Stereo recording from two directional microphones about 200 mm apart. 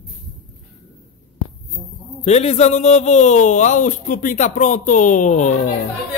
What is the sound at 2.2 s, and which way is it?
A man's voice, 35° left (ahead or behind).